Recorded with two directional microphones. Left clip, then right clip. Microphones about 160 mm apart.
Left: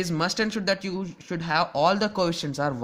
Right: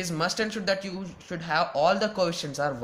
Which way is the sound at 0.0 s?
50° left (ahead or behind).